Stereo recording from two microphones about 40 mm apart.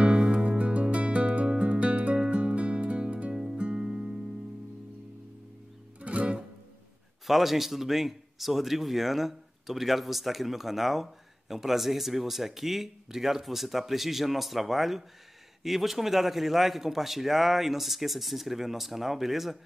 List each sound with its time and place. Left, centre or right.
0.0 s music: right
3.5 s music: right
5.9 s music: right
7.2 s speech: centre